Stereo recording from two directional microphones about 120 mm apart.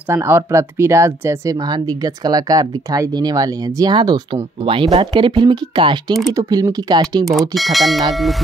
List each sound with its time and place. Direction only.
0.1 s speech: 20° right (ahead or behind); by 7.2 s 35° right (ahead or behind)
7.2 s speech: centre (ahead or behind)